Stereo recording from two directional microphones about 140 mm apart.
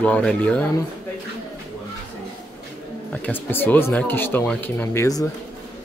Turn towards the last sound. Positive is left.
turn(degrees=25)  # may be behind; listen again after turning